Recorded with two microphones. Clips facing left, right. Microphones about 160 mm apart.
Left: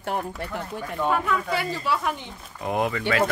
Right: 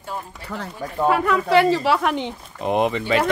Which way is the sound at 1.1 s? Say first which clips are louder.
Right 8 dB; 85° right.